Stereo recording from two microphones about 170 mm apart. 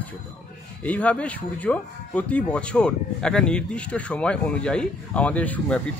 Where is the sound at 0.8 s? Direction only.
10° left (ahead or behind).